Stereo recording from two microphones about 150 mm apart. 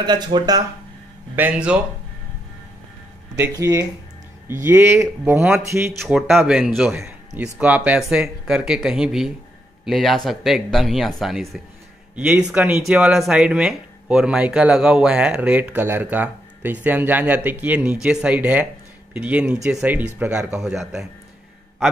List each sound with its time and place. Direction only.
0.0 s speech: 30° right (ahead or behind)
1.3 s speech: 10° right (ahead or behind)
3.3 s speech: 15° right (ahead or behind)
6.0 s speech: centre (ahead or behind)